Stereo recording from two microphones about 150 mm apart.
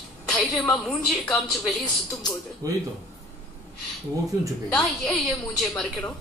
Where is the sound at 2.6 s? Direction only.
20° right (ahead or behind).